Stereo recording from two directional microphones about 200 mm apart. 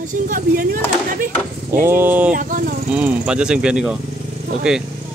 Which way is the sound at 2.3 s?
40° right (ahead or behind).